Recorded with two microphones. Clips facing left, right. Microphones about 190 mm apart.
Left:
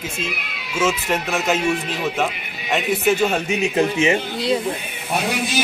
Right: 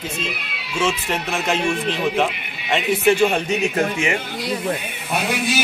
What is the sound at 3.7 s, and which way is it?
Speech, 25° left (ahead or behind).